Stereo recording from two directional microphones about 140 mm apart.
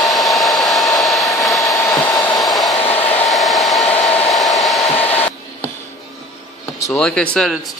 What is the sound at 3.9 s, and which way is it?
Hair dryer, 45° left (ahead or behind).